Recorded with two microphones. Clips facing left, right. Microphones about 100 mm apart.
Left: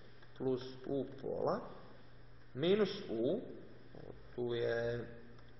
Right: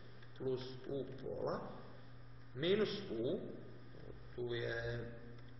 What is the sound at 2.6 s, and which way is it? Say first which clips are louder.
Speech: left 3 dB; 30° left (ahead or behind).